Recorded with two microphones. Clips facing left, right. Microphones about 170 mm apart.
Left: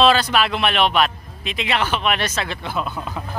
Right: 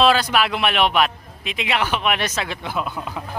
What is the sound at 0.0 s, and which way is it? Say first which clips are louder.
A man's voice: left 1 dB; 10° right (ahead or behind).